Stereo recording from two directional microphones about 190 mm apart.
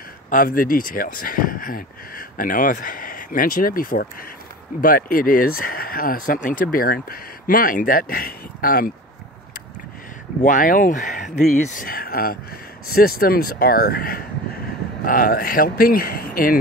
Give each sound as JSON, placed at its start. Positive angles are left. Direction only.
{"t": 0.3, "sound": "speech", "side_deg": 45}
{"t": 10.4, "sound": "speech", "side_deg": 45}